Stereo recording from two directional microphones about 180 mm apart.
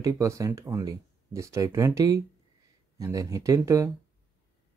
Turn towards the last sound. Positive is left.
turn(degrees=-15)  # may be behind; listen again after turning